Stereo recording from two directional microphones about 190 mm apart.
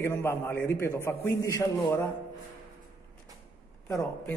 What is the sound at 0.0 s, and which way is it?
A man's voice, 15° left (ahead or behind).